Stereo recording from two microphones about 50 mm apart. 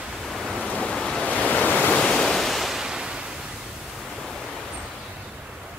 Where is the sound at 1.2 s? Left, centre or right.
Left.